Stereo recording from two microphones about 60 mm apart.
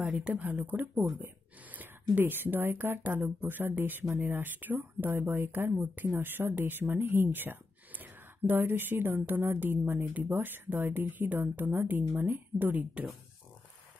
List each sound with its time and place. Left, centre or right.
0.1 s speech: right
5.7 s speech: right
12.3 s speech: right